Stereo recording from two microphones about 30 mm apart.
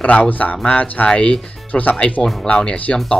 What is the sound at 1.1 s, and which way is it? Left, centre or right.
Speech, left.